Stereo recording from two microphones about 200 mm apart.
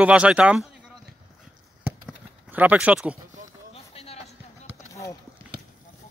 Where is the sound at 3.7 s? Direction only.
30° left (ahead or behind).